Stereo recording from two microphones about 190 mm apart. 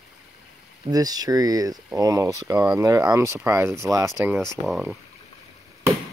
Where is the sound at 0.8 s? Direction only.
20° right (ahead or behind).